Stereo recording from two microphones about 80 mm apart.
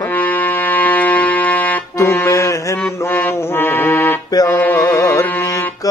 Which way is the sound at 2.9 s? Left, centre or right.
Left.